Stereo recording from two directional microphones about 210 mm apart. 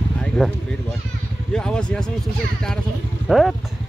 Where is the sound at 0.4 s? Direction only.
Centre (ahead or behind).